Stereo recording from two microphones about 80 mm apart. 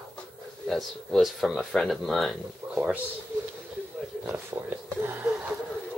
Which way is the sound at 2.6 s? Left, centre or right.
Right.